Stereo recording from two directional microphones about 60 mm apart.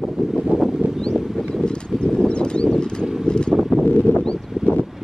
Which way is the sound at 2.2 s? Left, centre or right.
Centre.